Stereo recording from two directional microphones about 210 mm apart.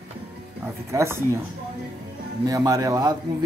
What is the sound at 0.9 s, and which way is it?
Speech, 15° right (ahead or behind).